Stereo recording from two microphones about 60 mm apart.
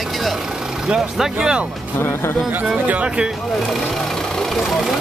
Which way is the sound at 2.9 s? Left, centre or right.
Right.